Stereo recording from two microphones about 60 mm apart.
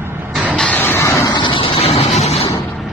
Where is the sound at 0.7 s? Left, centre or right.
Left.